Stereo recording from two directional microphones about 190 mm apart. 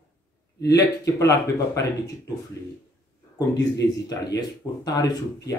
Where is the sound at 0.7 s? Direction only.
20° left (ahead or behind).